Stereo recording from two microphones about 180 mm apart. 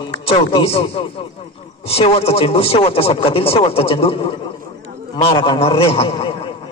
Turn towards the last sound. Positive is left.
turn(degrees=30)  # may be behind; listen again after turning